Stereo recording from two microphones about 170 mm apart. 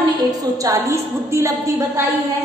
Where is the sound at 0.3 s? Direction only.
20° right (ahead or behind).